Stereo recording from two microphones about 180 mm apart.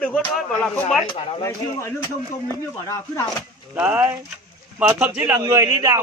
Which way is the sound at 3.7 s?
10° right (ahead or behind).